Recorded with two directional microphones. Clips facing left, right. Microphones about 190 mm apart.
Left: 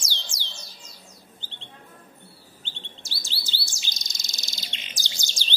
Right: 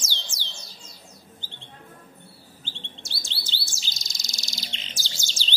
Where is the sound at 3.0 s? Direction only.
5° left (ahead or behind).